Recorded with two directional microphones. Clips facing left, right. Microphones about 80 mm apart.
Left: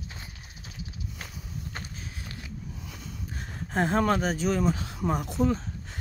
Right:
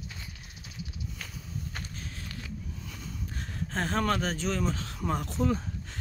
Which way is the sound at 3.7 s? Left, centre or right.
Centre.